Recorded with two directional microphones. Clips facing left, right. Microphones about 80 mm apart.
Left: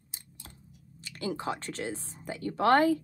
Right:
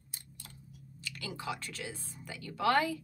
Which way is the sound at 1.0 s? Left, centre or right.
Left.